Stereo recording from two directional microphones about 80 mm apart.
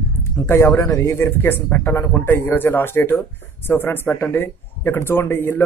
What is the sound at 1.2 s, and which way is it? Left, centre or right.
A man's voice, left.